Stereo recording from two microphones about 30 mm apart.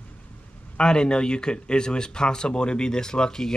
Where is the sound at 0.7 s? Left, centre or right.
Left.